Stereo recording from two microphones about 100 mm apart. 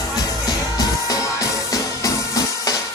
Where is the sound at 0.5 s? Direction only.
35° left (ahead or behind).